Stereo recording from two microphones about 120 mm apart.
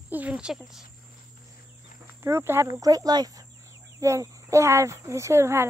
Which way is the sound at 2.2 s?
20° right (ahead or behind).